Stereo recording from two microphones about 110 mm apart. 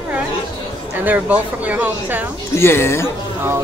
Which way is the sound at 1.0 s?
15° right (ahead or behind).